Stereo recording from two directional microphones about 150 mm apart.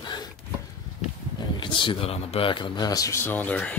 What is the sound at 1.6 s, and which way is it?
A man's voice, 35° left (ahead or behind).